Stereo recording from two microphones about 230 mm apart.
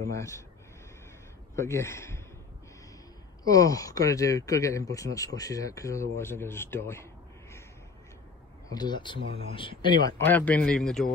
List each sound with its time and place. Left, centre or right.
0.1 s speech: centre
1.5 s speech: centre
3.4 s speech: centre
8.6 s speech: centre
10.1 s a man's voice: centre